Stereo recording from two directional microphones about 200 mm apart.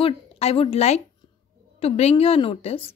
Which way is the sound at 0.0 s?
30° left (ahead or behind).